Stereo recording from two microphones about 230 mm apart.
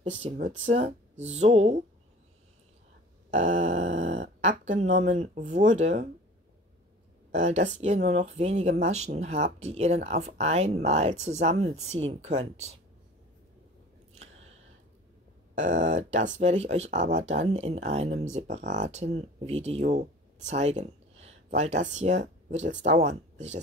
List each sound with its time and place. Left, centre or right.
0.4 s speech: right
1.1 s speech: right
1.4 s speech: right
3.3 s speech: right
7.3 s speech: right
15.5 s speech: right